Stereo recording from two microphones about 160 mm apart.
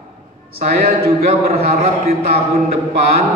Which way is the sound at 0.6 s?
70° right (ahead or behind).